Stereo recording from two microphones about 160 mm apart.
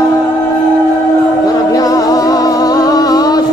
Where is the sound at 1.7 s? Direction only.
20° left (ahead or behind).